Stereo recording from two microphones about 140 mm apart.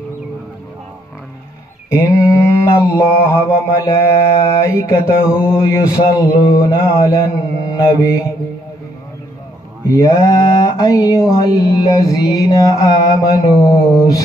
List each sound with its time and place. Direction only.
1.9 s mantra: 20° left (ahead or behind)
9.9 s mantra: 20° left (ahead or behind)